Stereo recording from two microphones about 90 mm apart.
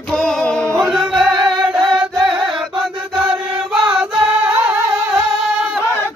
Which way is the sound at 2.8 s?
5° right (ahead or behind).